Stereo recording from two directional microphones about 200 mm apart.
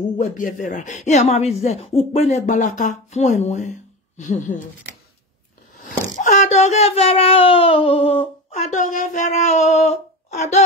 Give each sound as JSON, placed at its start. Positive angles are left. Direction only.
{"t": 0.2, "sound": "speech", "side_deg": 40}
{"t": 6.2, "sound": "speech", "side_deg": 35}